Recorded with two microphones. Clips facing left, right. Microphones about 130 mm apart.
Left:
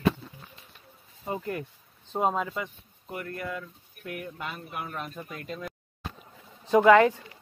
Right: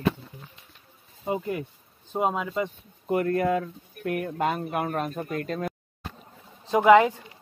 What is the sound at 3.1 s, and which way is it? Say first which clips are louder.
Speech: right 12 dB; 70° right (ahead or behind).